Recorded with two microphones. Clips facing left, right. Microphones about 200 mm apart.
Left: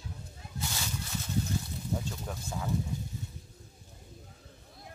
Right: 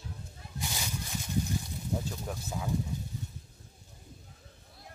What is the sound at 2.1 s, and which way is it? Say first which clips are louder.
Speech: right 1 dB; 5° right (ahead or behind).